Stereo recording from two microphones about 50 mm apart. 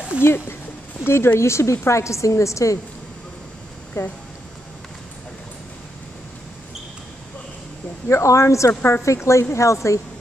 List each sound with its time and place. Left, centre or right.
0.2 s a woman's voice: left
3.9 s a woman's voice: left
8.1 s a woman's voice: left